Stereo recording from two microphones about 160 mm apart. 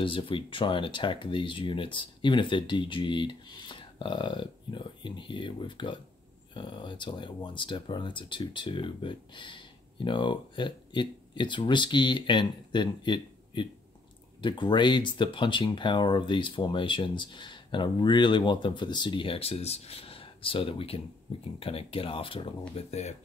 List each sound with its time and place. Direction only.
0.0 s speech: 35° left (ahead or behind)